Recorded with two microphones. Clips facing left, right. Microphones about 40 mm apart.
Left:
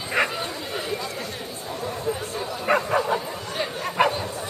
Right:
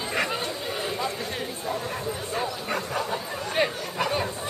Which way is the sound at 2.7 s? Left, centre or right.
Left.